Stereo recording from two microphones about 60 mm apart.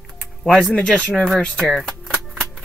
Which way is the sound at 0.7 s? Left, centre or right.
Left.